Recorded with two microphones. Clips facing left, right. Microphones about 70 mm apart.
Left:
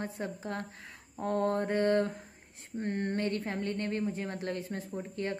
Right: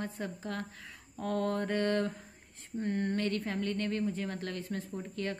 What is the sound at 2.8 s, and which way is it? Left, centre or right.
A woman's voice, left.